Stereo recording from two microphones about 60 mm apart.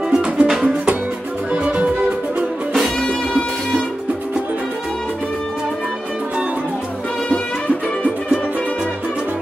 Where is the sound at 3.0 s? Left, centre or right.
Centre.